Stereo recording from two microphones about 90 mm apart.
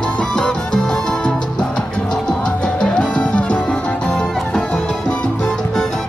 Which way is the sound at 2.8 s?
10° left (ahead or behind).